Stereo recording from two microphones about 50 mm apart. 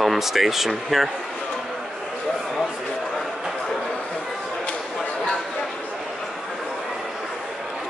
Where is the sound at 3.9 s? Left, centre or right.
Left.